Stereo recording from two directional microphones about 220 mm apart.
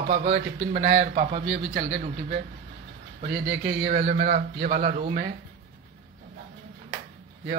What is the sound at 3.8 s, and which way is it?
A man's voice, 30° right (ahead or behind).